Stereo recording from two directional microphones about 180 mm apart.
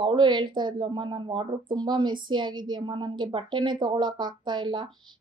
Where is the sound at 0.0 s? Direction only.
25° right (ahead or behind).